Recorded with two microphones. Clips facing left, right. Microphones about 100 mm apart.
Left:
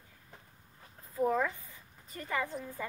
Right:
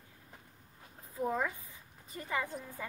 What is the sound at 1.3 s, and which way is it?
Speech, 15° right (ahead or behind).